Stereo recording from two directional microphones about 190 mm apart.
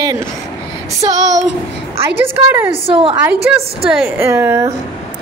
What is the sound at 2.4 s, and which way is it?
Speech, 10° right (ahead or behind).